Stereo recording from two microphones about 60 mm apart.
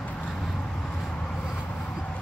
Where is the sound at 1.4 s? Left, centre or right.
Centre.